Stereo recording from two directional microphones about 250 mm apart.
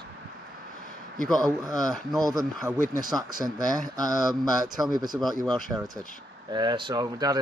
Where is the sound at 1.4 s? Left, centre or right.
Centre.